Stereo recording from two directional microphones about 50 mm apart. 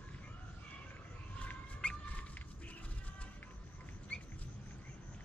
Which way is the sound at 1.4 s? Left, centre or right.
Left.